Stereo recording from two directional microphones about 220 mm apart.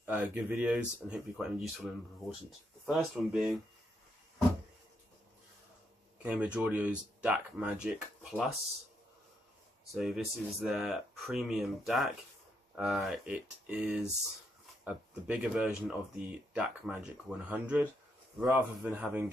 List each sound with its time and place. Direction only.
0.0 s speech: 5° right (ahead or behind)
6.2 s speech: 5° right (ahead or behind)
9.9 s speech: centre (ahead or behind)